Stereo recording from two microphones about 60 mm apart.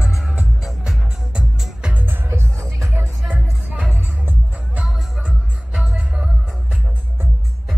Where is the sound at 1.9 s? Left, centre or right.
Right.